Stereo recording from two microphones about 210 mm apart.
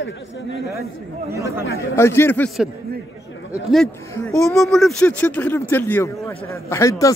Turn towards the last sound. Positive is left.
turn(degrees=15)  # may be behind; listen again after turning